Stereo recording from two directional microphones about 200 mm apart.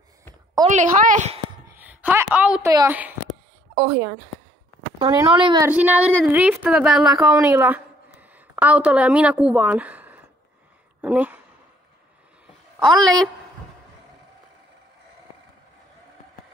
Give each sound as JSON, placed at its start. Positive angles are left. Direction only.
{"t": 0.7, "sound": "a woman's voice", "side_deg": -40}
{"t": 1.7, "sound": "a woman's voice", "side_deg": -10}
{"t": 5.7, "sound": "a woman's voice", "side_deg": -5}
{"t": 7.2, "sound": "a woman's voice", "side_deg": -15}
{"t": 11.0, "sound": "a sound", "side_deg": -10}
{"t": 12.7, "sound": "a woman's voice", "side_deg": 0}